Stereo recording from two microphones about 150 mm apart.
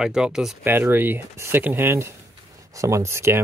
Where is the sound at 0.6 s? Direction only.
15° right (ahead or behind).